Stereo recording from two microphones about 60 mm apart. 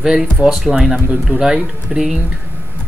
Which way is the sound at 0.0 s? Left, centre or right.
Centre.